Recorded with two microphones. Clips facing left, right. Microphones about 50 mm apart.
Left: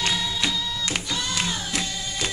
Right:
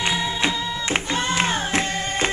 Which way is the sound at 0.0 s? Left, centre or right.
Right.